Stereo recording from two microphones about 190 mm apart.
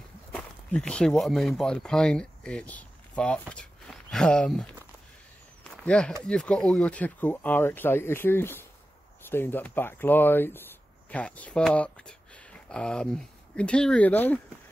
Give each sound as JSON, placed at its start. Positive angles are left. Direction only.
{"t": 0.3, "sound": "speech", "side_deg": 5}
{"t": 5.6, "sound": "a sound", "side_deg": 5}
{"t": 6.2, "sound": "speech", "side_deg": 5}